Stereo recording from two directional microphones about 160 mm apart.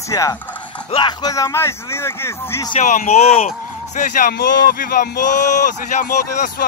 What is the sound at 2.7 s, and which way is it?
Speech, 50° left (ahead or behind).